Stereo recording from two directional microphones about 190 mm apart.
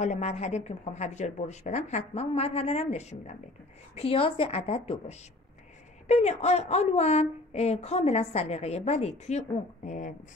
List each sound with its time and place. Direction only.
0.0 s speech: 35° left (ahead or behind)
6.0 s speech: 35° left (ahead or behind)